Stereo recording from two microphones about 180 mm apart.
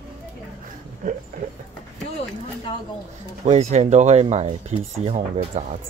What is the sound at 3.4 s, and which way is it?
Speech, 35° right (ahead or behind).